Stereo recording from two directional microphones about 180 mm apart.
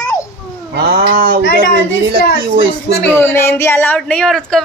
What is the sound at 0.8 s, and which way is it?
Speech, 55° right (ahead or behind).